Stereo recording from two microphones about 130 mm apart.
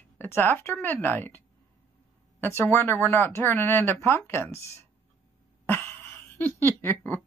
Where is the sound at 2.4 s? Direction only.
15° left (ahead or behind).